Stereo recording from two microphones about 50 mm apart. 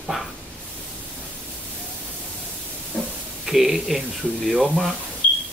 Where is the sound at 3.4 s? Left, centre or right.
Centre.